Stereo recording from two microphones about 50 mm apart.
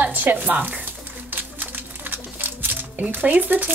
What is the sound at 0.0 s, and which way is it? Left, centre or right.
Speech, right.